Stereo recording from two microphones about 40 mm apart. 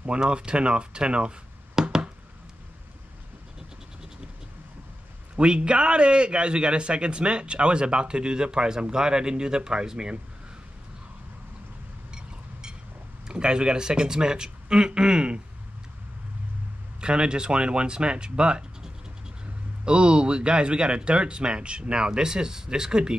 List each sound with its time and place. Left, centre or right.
0.2 s a man's voice: right
1.8 s a sound: centre
5.3 s a man's voice: right
12.1 s a sound: centre
13.3 s a man's voice: right
17.0 s a man's voice: right
19.8 s a man's voice: right